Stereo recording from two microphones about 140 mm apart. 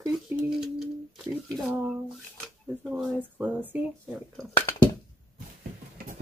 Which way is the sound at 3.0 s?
10° right (ahead or behind).